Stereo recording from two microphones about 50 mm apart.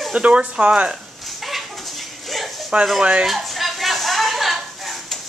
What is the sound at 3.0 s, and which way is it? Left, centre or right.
Speech, right.